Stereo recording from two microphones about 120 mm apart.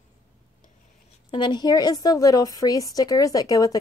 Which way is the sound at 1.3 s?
40° left (ahead or behind).